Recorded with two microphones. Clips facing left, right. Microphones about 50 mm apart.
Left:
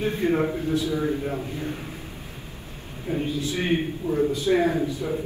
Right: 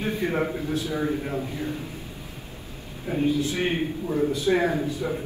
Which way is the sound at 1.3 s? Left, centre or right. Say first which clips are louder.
Right 1 dB; left.